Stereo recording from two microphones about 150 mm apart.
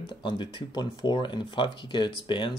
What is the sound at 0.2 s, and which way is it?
Speech, 35° left (ahead or behind).